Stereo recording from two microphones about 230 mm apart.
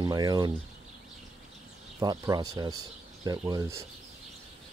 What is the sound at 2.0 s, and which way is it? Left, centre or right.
Speech, centre.